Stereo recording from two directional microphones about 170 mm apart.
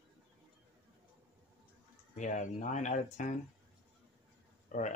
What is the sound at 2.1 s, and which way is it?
Speech, 45° left (ahead or behind).